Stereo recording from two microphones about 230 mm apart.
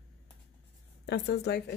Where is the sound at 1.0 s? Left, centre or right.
Left.